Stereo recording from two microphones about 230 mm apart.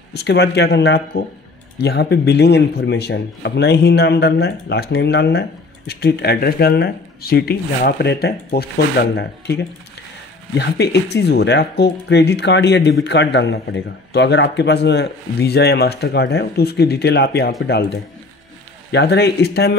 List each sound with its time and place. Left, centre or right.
0.1 s a man's voice: left
18.9 s a man's voice: left